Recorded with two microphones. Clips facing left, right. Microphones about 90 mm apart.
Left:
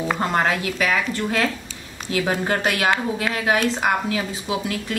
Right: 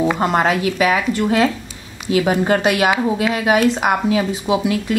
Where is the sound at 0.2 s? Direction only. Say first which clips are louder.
Right 5 dB; 15° right (ahead or behind).